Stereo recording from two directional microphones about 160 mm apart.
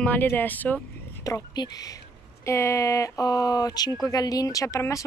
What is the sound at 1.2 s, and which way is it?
Speech, 25° left (ahead or behind).